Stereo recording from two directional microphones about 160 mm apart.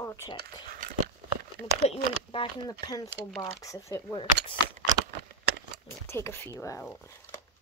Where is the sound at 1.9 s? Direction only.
35° left (ahead or behind).